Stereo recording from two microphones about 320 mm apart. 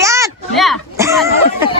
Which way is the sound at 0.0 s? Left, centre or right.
Centre.